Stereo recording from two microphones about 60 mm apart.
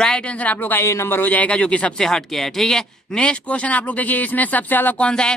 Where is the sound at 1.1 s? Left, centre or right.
Left.